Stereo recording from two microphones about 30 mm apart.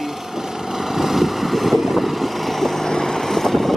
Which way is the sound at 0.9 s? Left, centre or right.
Centre.